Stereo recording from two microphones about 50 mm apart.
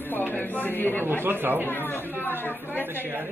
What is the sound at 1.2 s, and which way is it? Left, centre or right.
Speech, right.